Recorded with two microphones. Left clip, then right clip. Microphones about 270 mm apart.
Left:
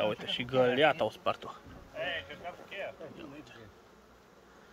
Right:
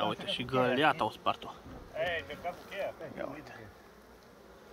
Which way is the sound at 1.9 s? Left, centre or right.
Right.